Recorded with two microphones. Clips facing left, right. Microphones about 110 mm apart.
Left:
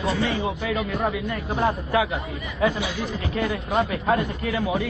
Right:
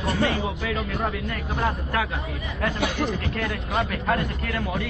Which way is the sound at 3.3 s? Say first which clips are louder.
Left 3 dB; 5° left (ahead or behind).